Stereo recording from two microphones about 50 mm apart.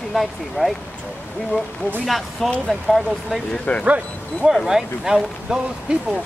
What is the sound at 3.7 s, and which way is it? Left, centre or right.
Speech, left.